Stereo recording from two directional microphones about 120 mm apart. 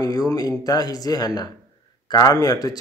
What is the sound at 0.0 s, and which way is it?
A man's voice, 30° left (ahead or behind).